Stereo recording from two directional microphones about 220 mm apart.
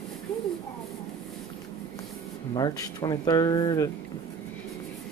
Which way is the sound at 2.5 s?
20° left (ahead or behind).